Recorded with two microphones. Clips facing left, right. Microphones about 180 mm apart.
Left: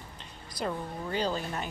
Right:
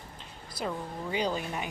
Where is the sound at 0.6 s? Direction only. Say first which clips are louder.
Left 1 dB; 5° right (ahead or behind).